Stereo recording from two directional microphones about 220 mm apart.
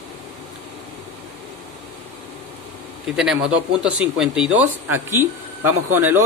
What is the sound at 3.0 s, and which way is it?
Speech, centre (ahead or behind).